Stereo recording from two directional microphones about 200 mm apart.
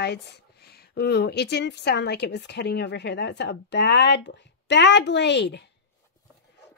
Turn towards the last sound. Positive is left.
turn(degrees=60)  # may be behind; listen again after turning